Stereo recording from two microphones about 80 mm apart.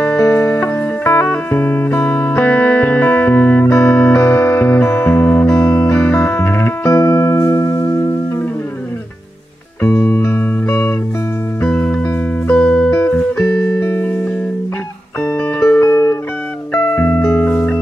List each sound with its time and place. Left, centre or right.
0.2 s music: left
6.2 s music: left
9.8 s music: left
15.3 s music: centre
17.2 s music: left
17.5 s music: left